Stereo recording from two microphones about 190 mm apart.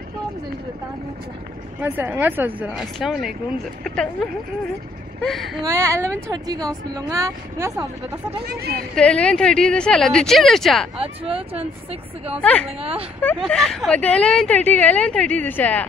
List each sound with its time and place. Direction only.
1.8 s speech: 10° right (ahead or behind)
5.7 s speech: 15° right (ahead or behind)
8.5 s a woman's voice: 55° right (ahead or behind)
8.9 s speech: 5° left (ahead or behind)
11.0 s speech: 30° right (ahead or behind)
12.4 s a woman's voice: 5° left (ahead or behind)